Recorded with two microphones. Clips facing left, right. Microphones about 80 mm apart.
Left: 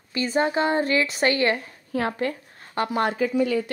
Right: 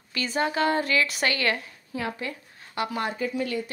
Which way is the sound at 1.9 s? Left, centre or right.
Left.